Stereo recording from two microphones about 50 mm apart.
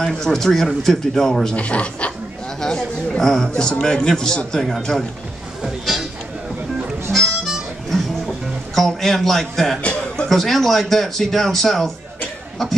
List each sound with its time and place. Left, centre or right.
0.0 s a man's voice: centre
1.6 s speech: left
2.6 s a man's voice: centre
7.1 s harmonica: centre
8.7 s a man's voice: centre